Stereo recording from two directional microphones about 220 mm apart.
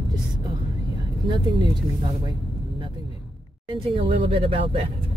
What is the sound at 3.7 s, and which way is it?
Speech, 25° right (ahead or behind).